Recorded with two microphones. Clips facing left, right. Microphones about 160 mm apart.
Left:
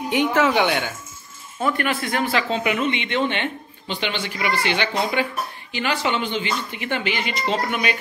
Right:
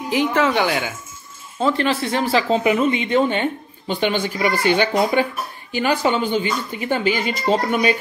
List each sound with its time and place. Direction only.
0.1 s speech: centre (ahead or behind)
1.6 s speech: 30° right (ahead or behind)